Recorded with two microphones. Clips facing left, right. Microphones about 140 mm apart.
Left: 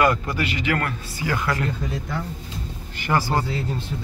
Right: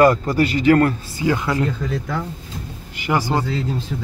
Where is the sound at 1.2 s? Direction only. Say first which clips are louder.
Right 5 dB; 20° right (ahead or behind).